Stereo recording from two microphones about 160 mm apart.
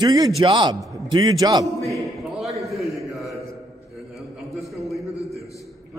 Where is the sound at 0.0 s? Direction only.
25° right (ahead or behind).